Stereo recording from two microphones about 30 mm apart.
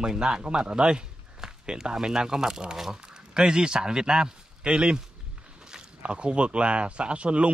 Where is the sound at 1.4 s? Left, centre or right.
Centre.